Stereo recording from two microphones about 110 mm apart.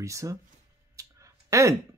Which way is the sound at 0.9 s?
30° right (ahead or behind).